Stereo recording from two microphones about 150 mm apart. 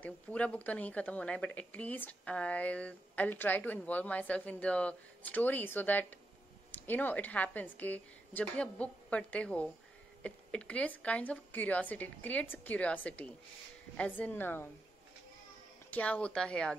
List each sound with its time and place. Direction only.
0.0 s a woman's voice: 10° left (ahead or behind)
15.9 s a woman's voice: 10° left (ahead or behind)